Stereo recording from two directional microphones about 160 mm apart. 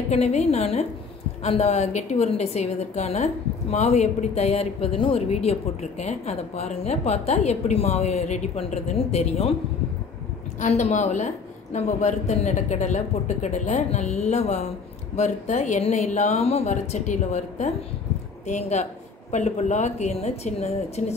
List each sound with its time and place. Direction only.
0.1 s a woman's voice: 45° left (ahead or behind)
10.6 s a woman's voice: 50° left (ahead or behind)